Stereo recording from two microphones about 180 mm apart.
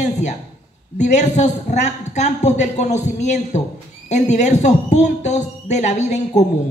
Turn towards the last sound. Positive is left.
turn(degrees=40)  # may be behind; listen again after turning